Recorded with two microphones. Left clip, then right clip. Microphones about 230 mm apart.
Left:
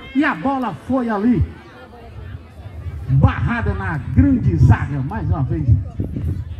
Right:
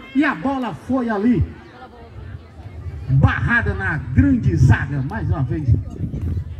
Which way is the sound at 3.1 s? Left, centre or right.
Right.